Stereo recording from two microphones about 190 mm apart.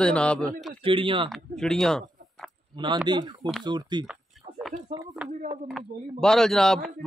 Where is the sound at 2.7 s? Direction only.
25° right (ahead or behind).